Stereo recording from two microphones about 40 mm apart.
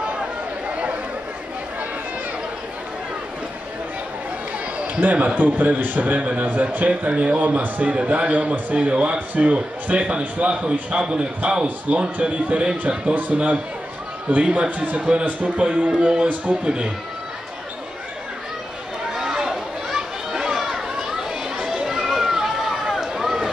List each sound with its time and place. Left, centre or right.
0.7 s chatter: right
4.7 s a sound: right
5.0 s a man's voice: right
19.1 s a sound: centre
20.5 s children playing: centre
21.6 s run: centre